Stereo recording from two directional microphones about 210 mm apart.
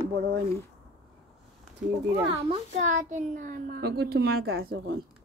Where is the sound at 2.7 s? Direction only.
35° right (ahead or behind).